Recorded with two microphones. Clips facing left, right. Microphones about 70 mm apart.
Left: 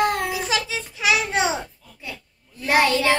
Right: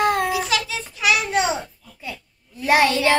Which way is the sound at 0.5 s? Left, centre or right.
Centre.